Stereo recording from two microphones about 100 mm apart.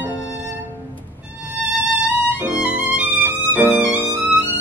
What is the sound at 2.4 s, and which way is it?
Violin, 15° right (ahead or behind).